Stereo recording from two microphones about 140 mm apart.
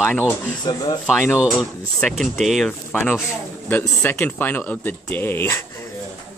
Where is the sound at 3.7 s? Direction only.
15° left (ahead or behind).